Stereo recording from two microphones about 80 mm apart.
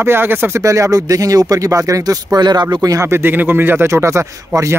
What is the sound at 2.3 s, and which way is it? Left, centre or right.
Speech, right.